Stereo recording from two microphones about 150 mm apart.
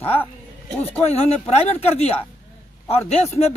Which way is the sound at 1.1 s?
45° left (ahead or behind).